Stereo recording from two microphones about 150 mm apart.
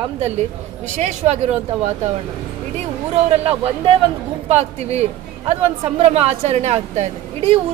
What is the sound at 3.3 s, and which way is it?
A woman's voice, 40° right (ahead or behind).